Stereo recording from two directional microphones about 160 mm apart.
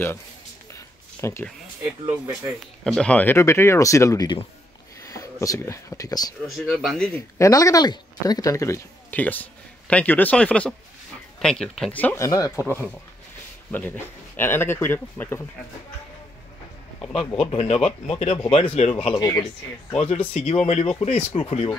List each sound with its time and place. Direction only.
0.7 s a sound: 15° left (ahead or behind)
2.8 s speech: 5° left (ahead or behind); by 6.3 s 25° left (ahead or behind)
6.4 s speech: centre (ahead or behind)
7.3 s speech: 20° left (ahead or behind)
12.3 s speech: 20° left (ahead or behind)
13.7 s speech: 10° left (ahead or behind)
17.3 s speech: 35° left (ahead or behind)
19.1 s speech: 20° left (ahead or behind)
20.0 s speech: 40° left (ahead or behind)